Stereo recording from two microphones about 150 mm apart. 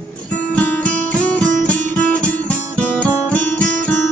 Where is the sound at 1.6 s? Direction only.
10° left (ahead or behind).